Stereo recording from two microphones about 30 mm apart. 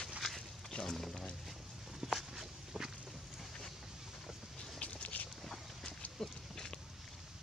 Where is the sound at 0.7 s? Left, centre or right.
Left.